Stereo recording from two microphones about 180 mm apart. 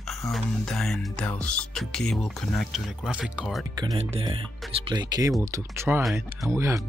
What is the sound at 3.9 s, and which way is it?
Speech, 30° right (ahead or behind).